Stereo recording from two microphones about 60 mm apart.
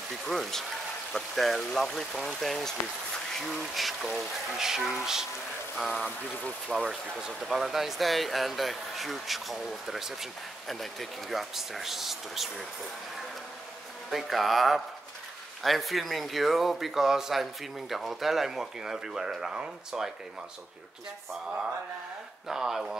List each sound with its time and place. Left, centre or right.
0.3 s speech: centre
14.1 s speech: centre
22.5 s speech: centre